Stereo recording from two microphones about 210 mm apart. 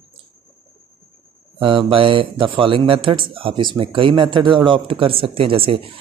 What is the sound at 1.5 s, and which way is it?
Speech, 25° right (ahead or behind).